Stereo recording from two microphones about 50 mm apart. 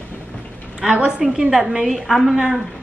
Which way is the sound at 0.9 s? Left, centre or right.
Right.